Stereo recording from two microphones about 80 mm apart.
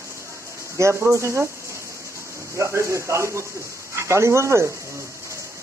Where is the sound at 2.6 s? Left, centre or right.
Right.